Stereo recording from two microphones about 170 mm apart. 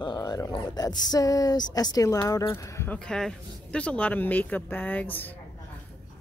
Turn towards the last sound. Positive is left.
turn(degrees=10)  # may be behind; listen again after turning